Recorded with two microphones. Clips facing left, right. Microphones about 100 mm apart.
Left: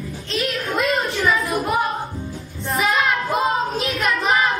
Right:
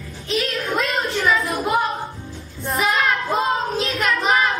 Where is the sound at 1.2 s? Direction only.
Centre (ahead or behind).